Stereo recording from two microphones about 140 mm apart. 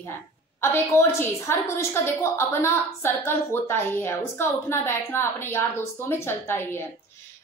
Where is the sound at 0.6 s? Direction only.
20° left (ahead or behind).